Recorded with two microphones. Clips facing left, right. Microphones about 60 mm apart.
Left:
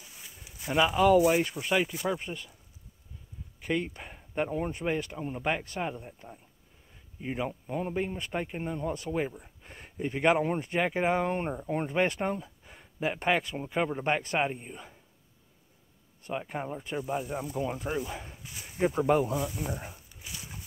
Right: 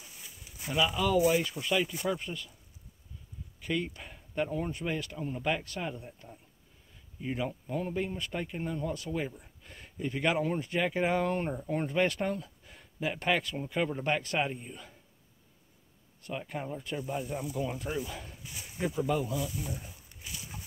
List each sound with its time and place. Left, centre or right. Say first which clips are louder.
0.7 s speech: left 6 dB; left
3.6 s speech: left 2 dB; left
16.2 s speech: left 3 dB; left
18.9 s speech: left 5 dB; left
19.5 s speech: left 4 dB; left